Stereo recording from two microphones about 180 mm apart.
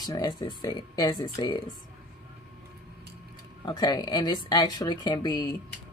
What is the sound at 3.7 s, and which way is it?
Speech, 25° left (ahead or behind).